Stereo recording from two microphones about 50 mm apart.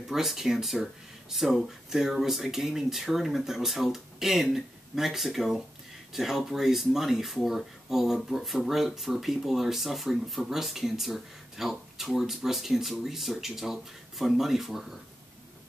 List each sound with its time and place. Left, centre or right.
0.1 s speech: centre